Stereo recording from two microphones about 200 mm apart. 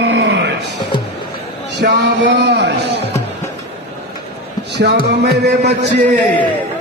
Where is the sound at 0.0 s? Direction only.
60° right (ahead or behind).